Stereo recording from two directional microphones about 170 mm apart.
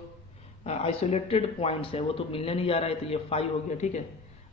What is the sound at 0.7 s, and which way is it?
Speech, 35° left (ahead or behind).